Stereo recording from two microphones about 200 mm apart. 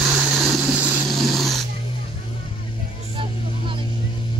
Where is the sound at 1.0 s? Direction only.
Centre (ahead or behind).